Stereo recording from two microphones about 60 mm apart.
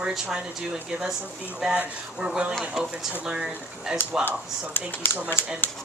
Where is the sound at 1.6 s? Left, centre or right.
Centre.